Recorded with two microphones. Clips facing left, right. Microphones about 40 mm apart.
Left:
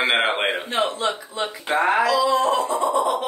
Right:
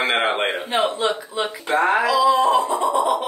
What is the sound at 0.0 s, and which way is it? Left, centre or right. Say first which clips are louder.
Speech: even; centre.